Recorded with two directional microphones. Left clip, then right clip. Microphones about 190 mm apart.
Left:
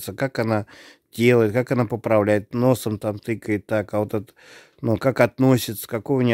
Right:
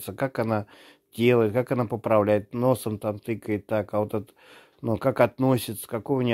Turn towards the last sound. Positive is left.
turn(degrees=35)  # may be behind; listen again after turning